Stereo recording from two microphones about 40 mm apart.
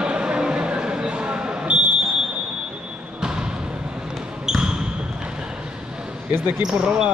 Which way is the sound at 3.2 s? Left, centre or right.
Centre.